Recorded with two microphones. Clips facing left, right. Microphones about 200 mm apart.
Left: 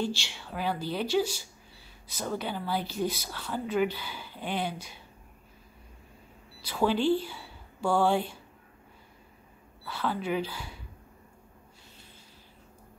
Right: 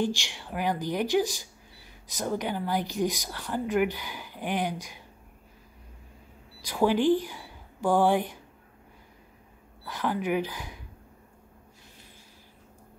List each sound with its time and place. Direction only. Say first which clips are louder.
0.0 s speech: right 3 dB; 15° right (ahead or behind)
6.6 s a woman's voice: right 3 dB; 15° right (ahead or behind)
9.8 s speech: right 2 dB; 15° right (ahead or behind)